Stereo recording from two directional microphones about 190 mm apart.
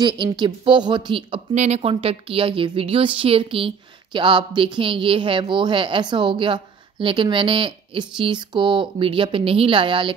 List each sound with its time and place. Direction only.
0.0 s a woman's voice: 25° right (ahead or behind)